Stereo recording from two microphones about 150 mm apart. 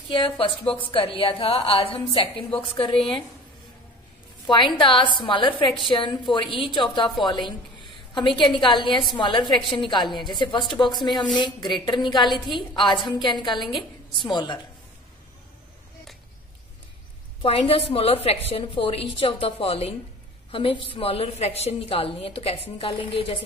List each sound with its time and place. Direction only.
0.1 s a woman's voice: 35° left (ahead or behind)
4.5 s a woman's voice: 30° left (ahead or behind)
17.4 s a woman's voice: 40° left (ahead or behind)